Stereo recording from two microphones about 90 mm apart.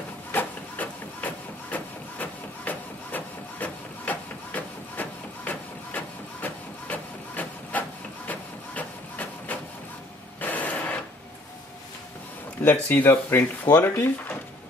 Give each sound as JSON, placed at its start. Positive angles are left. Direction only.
{"t": 0.3, "sound": "printer", "side_deg": 20}
{"t": 10.4, "sound": "a sound", "side_deg": 20}
{"t": 12.6, "sound": "speech", "side_deg": 25}